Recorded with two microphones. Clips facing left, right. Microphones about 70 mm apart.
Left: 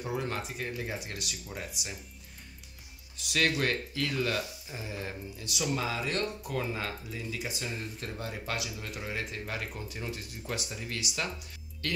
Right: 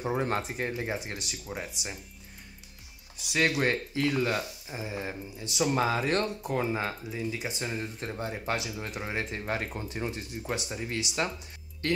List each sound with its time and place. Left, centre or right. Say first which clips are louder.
0.1 s speech: right 4 dB; right
3.2 s speech: right 2 dB; centre